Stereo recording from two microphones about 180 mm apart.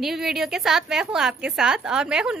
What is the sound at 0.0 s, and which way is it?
A woman's voice, centre (ahead or behind).